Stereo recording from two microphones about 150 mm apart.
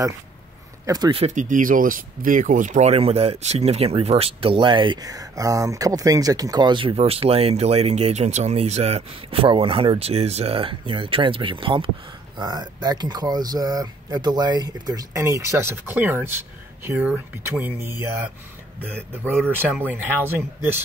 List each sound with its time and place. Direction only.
0.8 s speech: 25° right (ahead or behind)
1.1 s speech: 50° right (ahead or behind); by 20.2 s 15° right (ahead or behind)